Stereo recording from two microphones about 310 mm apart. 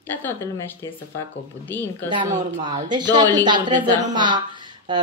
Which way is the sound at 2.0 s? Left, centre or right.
Centre.